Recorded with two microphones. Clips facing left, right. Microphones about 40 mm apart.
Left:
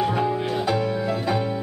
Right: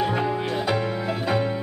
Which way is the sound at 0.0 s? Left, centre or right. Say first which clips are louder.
Left 1 dB; centre.